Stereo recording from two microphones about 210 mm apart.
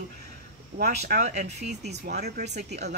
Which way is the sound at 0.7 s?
50° right (ahead or behind).